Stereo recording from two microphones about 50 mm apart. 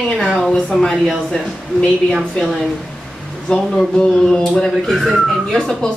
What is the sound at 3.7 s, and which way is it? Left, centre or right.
Speech, centre.